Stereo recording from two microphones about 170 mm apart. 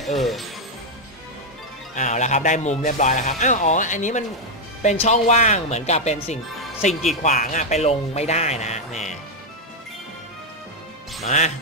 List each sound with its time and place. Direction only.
0.0 s speech: centre (ahead or behind)
2.0 s speech: 45° left (ahead or behind)
11.2 s speech: 40° left (ahead or behind)